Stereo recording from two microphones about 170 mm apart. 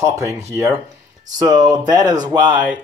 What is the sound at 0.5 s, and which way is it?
Speech, 15° right (ahead or behind).